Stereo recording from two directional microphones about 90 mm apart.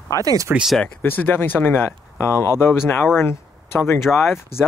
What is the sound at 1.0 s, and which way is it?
Speech, 25° left (ahead or behind).